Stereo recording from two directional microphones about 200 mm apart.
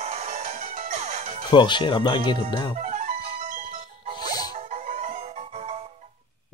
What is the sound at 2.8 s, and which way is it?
Music, 35° right (ahead or behind).